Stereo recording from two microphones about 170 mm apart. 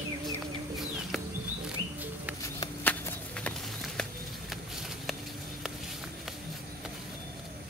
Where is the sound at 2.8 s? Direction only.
10° left (ahead or behind).